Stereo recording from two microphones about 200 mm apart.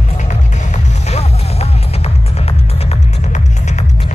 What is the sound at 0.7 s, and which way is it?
Music, 35° left (ahead or behind).